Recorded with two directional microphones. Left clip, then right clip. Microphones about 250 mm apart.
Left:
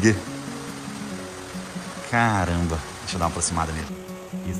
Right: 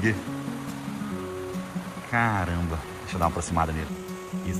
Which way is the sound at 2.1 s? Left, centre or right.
Centre.